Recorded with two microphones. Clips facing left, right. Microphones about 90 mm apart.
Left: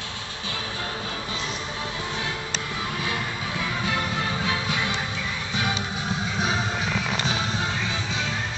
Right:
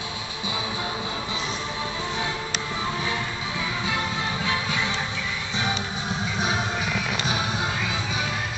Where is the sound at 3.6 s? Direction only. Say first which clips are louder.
Left 1 dB; 15° right (ahead or behind).